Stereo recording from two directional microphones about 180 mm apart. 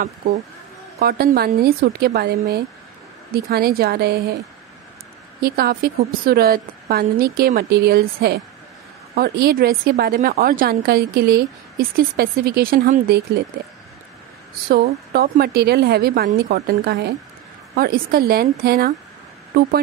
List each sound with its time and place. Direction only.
0.9 s a woman's voice: 60° right (ahead or behind)
5.4 s a woman's voice: 55° right (ahead or behind)
14.7 s a woman's voice: 60° right (ahead or behind)